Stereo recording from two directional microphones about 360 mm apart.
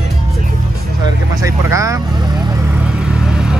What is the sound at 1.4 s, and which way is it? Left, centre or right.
Vehicle, centre.